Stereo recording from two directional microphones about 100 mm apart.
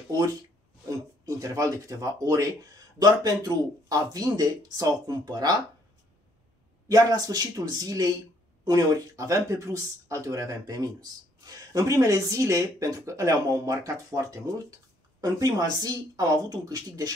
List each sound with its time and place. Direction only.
0.1 s speech: 35° right (ahead or behind)
6.9 s speech: 35° right (ahead or behind)